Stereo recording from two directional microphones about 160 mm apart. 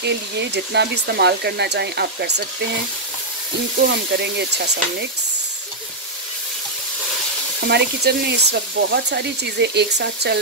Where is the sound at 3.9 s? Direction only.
90° right.